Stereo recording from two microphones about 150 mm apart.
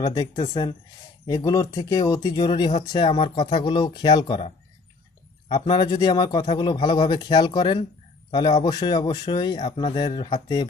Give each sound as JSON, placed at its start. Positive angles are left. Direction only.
{"t": 0.0, "sound": "speech", "side_deg": 25}
{"t": 2.7, "sound": "speech", "side_deg": 45}
{"t": 3.1, "sound": "speech", "side_deg": 30}